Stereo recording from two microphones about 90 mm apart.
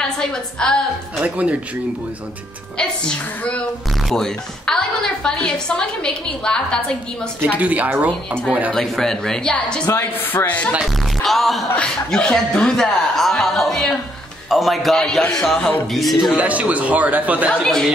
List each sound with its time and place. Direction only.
0.0 s a woman's voice: 5° left (ahead or behind)
1.2 s a man's voice: 15° right (ahead or behind)
4.1 s a woman's voice: 5° left (ahead or behind)
7.4 s a man's voice: 15° right (ahead or behind)
8.7 s a woman's voice: 5° left (ahead or behind)
9.8 s speech: 25° left (ahead or behind)
11.2 s speech: centre (ahead or behind)
16.3 s a man's voice: 15° right (ahead or behind)
17.6 s speech: 5° left (ahead or behind)